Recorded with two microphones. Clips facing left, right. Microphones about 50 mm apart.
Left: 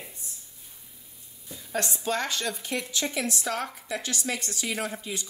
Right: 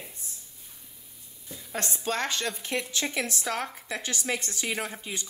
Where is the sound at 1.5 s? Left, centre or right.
Centre.